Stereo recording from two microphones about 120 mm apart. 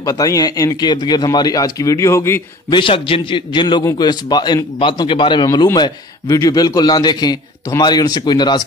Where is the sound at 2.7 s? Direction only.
45° left (ahead or behind).